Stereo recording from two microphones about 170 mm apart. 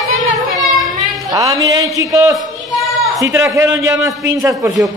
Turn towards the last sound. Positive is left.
turn(degrees=-20)  # may be behind; listen again after turning